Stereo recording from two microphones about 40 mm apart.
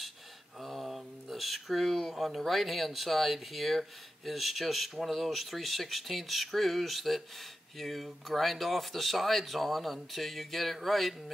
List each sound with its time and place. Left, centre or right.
0.6 s speech: centre